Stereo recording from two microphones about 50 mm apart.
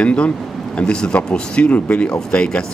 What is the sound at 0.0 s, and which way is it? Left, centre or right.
Speech, left.